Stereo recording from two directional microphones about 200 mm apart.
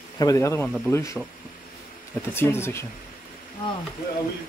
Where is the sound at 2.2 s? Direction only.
10° left (ahead or behind).